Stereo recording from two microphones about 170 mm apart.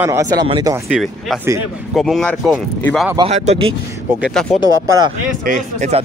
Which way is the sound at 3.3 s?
40° right (ahead or behind).